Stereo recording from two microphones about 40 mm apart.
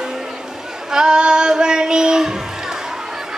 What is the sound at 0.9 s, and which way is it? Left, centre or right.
Female singing, centre.